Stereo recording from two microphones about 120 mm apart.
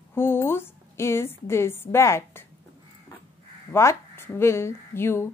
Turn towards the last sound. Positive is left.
turn(degrees=20)  # may be behind; listen again after turning